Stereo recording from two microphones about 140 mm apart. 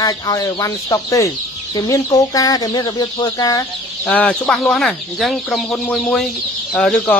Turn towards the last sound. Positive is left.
turn(degrees=5)  # may be behind; listen again after turning